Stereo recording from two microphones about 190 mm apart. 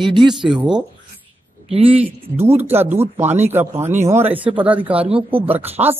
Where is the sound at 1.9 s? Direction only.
10° right (ahead or behind).